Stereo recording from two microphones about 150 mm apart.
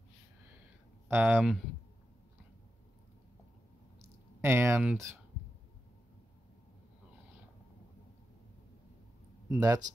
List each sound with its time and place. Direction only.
1.0 s speech: 10° right (ahead or behind)
4.0 s a sound: 15° right (ahead or behind)
9.5 s speech: 20° right (ahead or behind)